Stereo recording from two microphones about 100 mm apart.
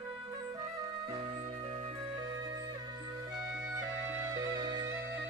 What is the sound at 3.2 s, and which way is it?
Music, 35° right (ahead or behind).